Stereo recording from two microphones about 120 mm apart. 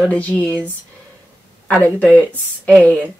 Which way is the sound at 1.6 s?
10° left (ahead or behind).